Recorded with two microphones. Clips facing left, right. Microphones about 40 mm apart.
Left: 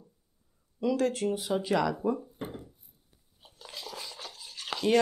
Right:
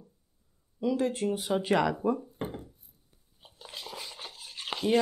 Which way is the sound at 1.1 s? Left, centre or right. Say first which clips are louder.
Even; right.